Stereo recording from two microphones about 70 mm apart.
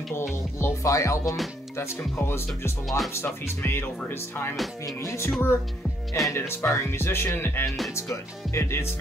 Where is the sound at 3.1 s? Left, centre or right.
Left.